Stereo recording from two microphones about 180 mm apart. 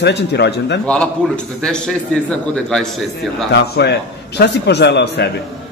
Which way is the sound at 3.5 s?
65° left (ahead or behind).